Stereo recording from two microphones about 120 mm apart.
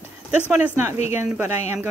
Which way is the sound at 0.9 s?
70° left (ahead or behind).